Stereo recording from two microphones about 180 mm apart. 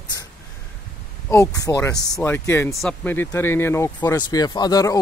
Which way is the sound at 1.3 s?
15° left (ahead or behind).